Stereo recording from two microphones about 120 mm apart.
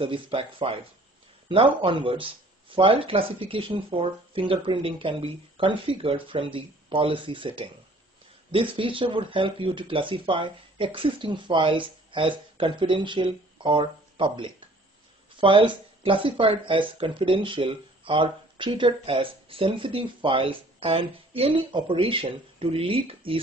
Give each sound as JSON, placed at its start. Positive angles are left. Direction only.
{"t": 0.0, "sound": "speech", "side_deg": -45}